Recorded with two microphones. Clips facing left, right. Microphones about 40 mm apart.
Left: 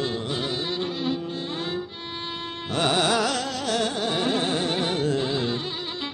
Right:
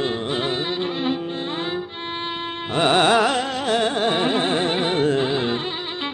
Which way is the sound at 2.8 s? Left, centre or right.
Right.